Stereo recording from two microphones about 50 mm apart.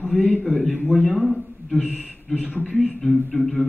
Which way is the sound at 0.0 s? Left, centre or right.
Left.